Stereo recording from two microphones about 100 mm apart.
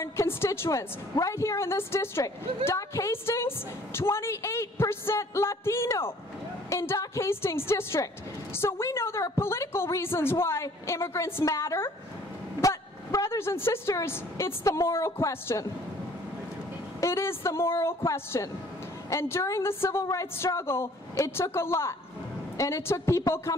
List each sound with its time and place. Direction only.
0.0 s a woman's voice: 25° left (ahead or behind)
17.0 s a woman's voice: 25° left (ahead or behind)